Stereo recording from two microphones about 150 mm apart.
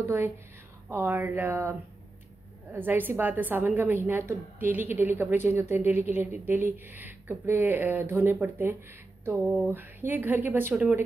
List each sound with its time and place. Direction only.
0.0 s a woman's voice: 15° right (ahead or behind)